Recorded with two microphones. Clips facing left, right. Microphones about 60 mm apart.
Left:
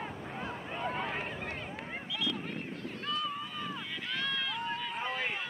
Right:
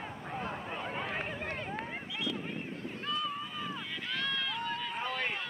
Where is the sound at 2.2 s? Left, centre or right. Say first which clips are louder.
Even; centre.